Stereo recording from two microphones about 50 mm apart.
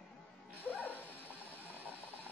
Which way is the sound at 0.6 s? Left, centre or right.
Left.